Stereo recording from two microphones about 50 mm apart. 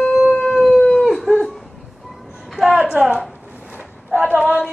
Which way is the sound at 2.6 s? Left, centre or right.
Centre.